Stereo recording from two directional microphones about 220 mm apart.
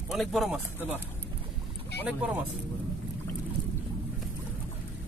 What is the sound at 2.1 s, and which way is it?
Speech, 5° right (ahead or behind).